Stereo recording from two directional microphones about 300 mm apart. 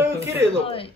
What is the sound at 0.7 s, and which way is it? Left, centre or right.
Speech, centre.